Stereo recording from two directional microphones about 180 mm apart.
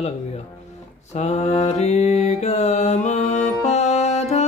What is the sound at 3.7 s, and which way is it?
Music, 40° left (ahead or behind).